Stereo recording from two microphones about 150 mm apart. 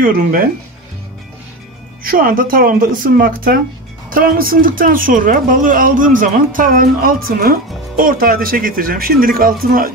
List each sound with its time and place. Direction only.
0.0 s speech: 70° right (ahead or behind)
2.0 s speech: 70° right (ahead or behind)